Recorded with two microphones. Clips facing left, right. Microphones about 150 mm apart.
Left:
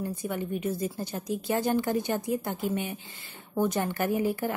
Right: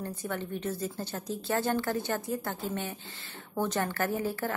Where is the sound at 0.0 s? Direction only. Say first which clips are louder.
Left 3 dB; 10° left (ahead or behind).